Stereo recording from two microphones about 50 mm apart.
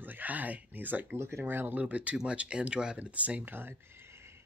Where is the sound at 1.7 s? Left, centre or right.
Right.